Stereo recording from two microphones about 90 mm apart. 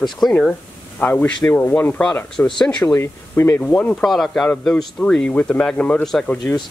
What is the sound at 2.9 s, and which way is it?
Speech, 30° left (ahead or behind).